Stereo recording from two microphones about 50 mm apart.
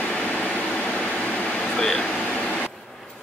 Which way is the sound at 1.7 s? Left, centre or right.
Centre.